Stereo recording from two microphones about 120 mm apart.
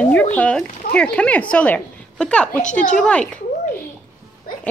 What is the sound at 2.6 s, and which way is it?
Speech, 90° left.